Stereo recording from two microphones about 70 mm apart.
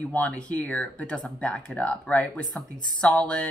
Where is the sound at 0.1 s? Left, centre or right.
Left.